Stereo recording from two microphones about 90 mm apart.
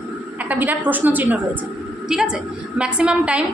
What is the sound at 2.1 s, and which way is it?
A woman's voice, 5° right (ahead or behind).